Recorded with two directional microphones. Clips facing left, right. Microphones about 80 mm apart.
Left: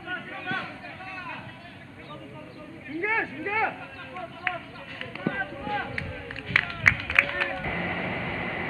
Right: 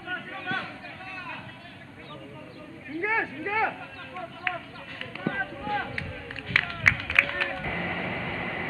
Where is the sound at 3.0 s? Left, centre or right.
Centre.